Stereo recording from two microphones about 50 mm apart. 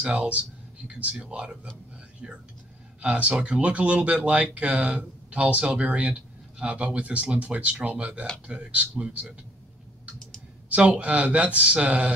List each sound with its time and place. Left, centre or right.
0.0 s speech: right
10.7 s speech: right